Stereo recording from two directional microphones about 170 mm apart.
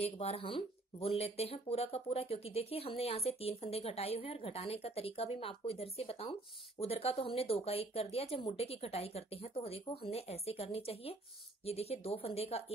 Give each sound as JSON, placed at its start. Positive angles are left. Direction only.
{"t": 0.0, "sound": "speech", "side_deg": 35}